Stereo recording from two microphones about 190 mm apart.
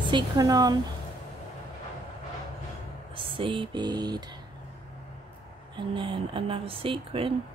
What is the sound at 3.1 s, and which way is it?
Speech, 25° right (ahead or behind).